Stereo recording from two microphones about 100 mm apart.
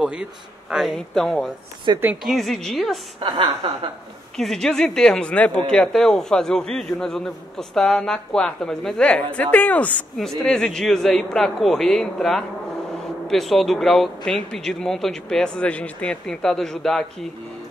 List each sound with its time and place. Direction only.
0.0 s speech: 10° right (ahead or behind)
1.9 s speech: 45° right (ahead or behind)
2.2 s speech: centre (ahead or behind)
3.2 s speech: 50° right (ahead or behind)
4.4 s speech: 5° left (ahead or behind)
10.4 s speech: 5° left (ahead or behind)